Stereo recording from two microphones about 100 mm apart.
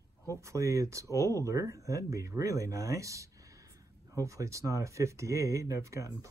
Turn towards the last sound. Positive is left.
turn(degrees=-30)  # may be behind; listen again after turning